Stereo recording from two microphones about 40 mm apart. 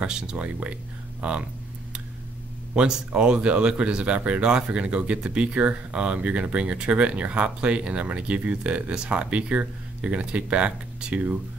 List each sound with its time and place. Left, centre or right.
0.0 s speech: centre
0.4 s speech: right
2.7 s speech: right
8.9 s speech: right